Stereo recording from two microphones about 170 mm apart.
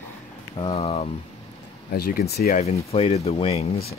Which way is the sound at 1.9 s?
60° left (ahead or behind).